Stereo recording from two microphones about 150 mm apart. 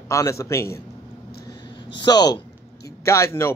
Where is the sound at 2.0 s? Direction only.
25° left (ahead or behind).